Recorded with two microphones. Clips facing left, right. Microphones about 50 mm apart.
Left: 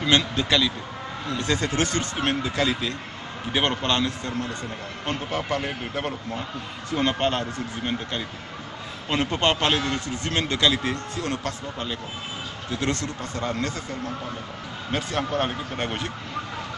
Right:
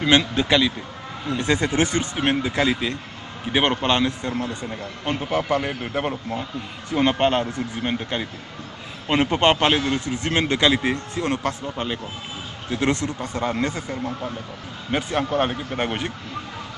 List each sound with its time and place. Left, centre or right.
0.0 s a man's voice: centre